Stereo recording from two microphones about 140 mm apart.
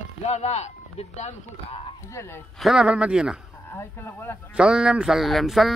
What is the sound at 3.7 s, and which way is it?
Speech, 15° left (ahead or behind).